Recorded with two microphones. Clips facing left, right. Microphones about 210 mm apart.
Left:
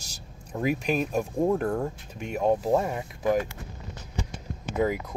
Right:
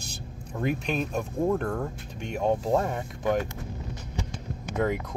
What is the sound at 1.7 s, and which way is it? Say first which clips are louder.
Speech: left 2 dB; 15° left (ahead or behind).